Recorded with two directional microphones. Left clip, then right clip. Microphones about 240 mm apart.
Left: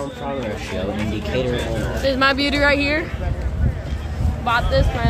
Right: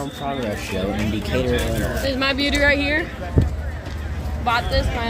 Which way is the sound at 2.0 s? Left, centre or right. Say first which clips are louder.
Left 5 dB; centre.